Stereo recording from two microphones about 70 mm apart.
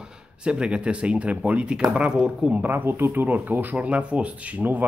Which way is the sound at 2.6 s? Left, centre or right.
Right.